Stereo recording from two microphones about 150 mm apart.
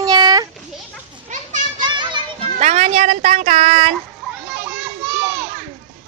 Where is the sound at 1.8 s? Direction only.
30° right (ahead or behind).